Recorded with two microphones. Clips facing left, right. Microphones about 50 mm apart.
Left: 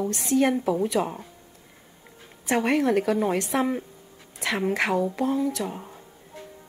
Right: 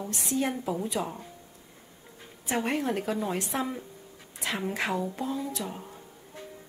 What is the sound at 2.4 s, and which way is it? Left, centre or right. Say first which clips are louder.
A woman's voice: left 6 dB; left.